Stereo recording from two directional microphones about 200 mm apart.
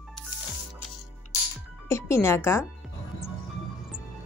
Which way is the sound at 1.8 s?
15° left (ahead or behind).